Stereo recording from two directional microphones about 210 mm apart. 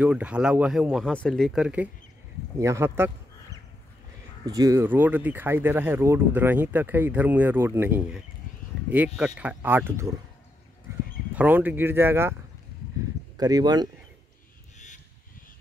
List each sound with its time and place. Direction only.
0.0 s speech: 5° right (ahead or behind)
4.5 s speech: 15° right (ahead or behind)
11.3 s speech: 10° right (ahead or behind)
13.4 s speech: 20° right (ahead or behind)